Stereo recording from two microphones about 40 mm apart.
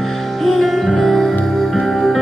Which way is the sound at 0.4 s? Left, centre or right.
Centre.